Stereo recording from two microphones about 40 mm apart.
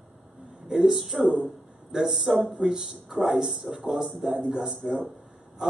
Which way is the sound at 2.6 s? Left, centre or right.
Centre.